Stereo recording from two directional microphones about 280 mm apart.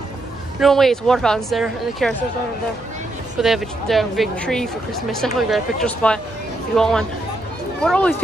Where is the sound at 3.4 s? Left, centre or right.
Centre.